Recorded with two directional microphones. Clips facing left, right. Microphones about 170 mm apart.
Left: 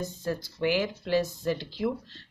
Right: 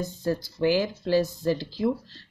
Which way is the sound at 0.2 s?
35° right (ahead or behind).